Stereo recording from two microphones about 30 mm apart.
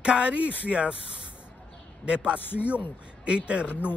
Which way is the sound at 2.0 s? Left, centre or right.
Right.